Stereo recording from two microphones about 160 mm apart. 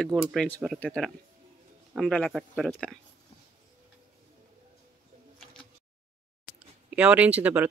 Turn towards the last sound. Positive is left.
turn(degrees=-10)  # may be behind; listen again after turning